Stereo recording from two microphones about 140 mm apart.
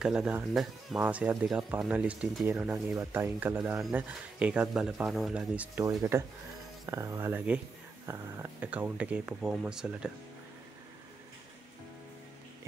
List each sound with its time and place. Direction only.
0.0 s speech: 5° right (ahead or behind)